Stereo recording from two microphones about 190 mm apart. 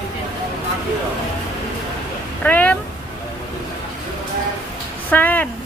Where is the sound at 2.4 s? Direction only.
10° left (ahead or behind).